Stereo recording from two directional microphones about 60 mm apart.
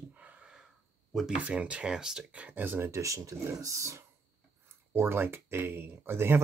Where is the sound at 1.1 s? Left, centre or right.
Centre.